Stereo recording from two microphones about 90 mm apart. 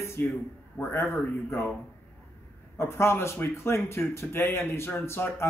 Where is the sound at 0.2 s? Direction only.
25° left (ahead or behind).